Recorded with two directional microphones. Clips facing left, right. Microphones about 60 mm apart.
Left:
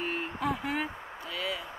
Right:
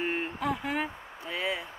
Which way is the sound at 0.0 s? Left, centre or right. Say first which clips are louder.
Right 2 dB; right.